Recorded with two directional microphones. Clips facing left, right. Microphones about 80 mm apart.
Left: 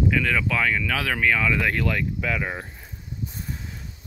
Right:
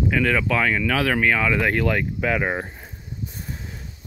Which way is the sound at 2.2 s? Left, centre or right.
Right.